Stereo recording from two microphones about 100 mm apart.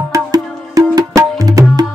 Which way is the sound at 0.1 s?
40° right (ahead or behind).